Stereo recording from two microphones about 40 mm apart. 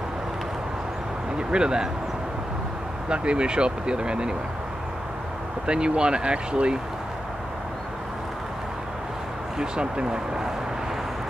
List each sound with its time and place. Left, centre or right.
1.5 s speech: centre
3.1 s speech: right
5.7 s speech: right
9.6 s speech: centre